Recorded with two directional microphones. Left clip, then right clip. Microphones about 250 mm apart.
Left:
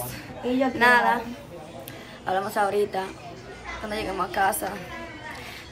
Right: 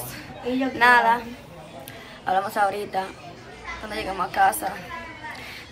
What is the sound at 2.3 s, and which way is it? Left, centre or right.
Speech, centre.